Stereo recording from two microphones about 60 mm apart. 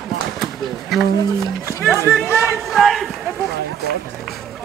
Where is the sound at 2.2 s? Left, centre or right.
Left.